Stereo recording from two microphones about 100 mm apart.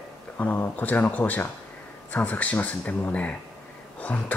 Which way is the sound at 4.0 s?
15° left (ahead or behind).